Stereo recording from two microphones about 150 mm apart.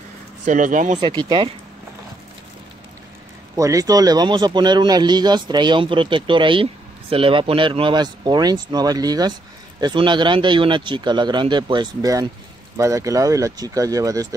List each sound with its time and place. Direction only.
0.5 s speech: 60° right (ahead or behind)
0.9 s speech: 30° right (ahead or behind)
3.5 s speech: 20° right (ahead or behind)